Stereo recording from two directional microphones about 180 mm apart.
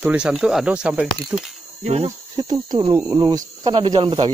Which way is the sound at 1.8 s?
35° right (ahead or behind).